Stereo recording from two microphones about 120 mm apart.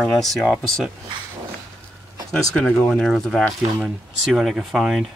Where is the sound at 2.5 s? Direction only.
5° left (ahead or behind).